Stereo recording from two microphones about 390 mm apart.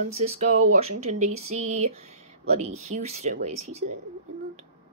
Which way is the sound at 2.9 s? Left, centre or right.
Centre.